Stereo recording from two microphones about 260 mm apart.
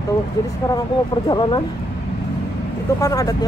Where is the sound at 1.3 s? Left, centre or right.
Centre.